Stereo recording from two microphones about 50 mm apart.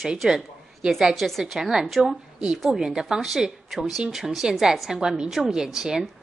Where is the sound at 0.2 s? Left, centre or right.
Centre.